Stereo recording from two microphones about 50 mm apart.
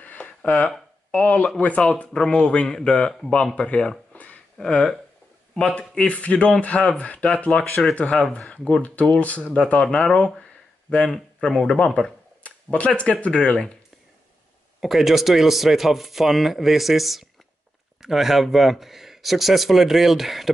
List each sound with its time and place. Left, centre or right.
0.0 s a sound: left
0.4 s speech: left
1.8 s speech: centre
4.1 s a sound: left
4.6 s speech: centre
11.5 s speech: centre
12.4 s speech: left
14.8 s speech: centre